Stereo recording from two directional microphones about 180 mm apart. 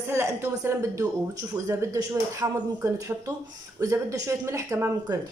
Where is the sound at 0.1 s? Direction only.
15° right (ahead or behind).